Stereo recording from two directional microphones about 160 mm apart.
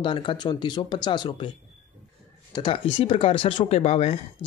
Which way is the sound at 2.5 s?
30° left (ahead or behind).